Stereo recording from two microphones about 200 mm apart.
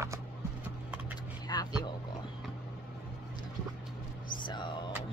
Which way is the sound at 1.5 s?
20° left (ahead or behind).